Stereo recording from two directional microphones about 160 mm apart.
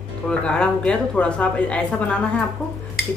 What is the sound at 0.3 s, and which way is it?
A woman's voice, 5° left (ahead or behind).